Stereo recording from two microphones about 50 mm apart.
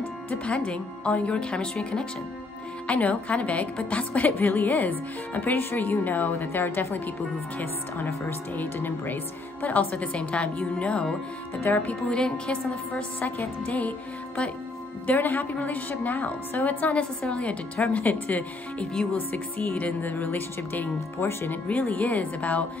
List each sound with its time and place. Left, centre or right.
0.3 s speech: left
2.9 s a woman's voice: left
11.6 s a woman's voice: left
12.1 s speech: centre
15.0 s a woman's voice: left